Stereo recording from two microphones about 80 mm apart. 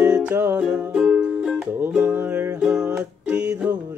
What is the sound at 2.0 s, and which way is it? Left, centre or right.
Music, right.